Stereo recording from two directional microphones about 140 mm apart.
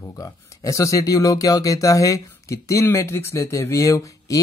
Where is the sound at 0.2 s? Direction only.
20° left (ahead or behind).